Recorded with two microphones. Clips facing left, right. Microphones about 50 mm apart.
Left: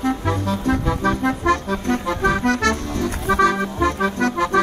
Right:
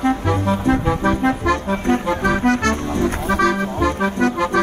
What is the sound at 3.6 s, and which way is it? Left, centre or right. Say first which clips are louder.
Music: right 1 dB; right.